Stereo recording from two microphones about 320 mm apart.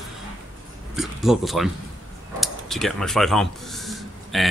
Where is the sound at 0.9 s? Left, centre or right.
Centre.